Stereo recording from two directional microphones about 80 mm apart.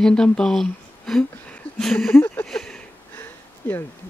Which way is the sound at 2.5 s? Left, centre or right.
Centre.